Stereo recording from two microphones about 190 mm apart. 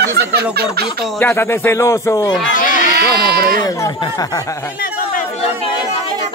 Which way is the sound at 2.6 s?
45° left (ahead or behind).